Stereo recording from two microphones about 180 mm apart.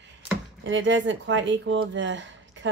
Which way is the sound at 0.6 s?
90° right.